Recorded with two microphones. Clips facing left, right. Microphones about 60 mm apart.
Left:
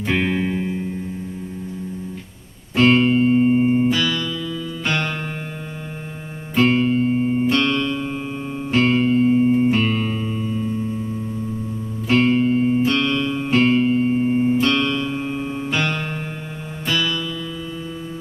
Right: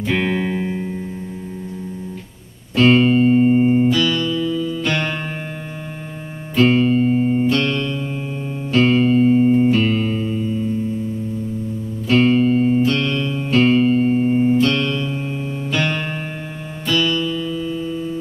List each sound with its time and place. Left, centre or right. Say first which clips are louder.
0.1 s music: right 1 dB; centre
2.8 s music: right 2 dB; centre
3.9 s music: right 3 dB; left
6.7 s music: right 2 dB; centre
7.4 s music: even; left
8.8 s music: right 3 dB; centre
12.3 s music: right 2 dB; centre
13.3 s music: even; left
13.6 s music: right 3 dB; centre
14.2 s music: right 2 dB; centre
14.6 s music: right 1 dB; left
16.8 s music: right 3 dB; left